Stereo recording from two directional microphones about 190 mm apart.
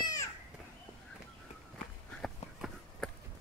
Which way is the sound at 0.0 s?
20° left (ahead or behind).